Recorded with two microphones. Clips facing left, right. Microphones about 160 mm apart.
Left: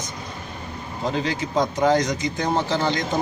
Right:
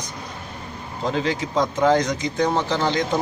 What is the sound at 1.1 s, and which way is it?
Speech, centre (ahead or behind).